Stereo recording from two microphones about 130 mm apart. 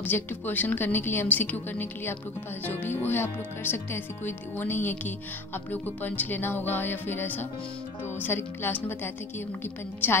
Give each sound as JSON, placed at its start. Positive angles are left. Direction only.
{"t": 0.0, "sound": "speech", "side_deg": 15}